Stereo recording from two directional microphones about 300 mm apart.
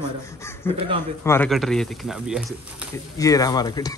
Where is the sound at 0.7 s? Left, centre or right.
Centre.